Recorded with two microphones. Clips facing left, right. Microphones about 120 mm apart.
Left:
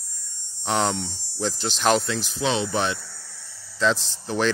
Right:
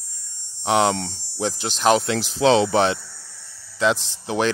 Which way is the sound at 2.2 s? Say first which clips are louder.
Right 8 dB; 90° right.